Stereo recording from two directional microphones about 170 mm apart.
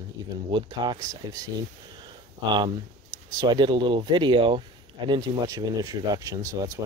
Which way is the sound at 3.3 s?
25° right (ahead or behind).